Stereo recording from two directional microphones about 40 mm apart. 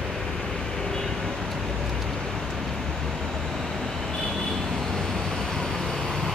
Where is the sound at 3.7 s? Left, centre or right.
Centre.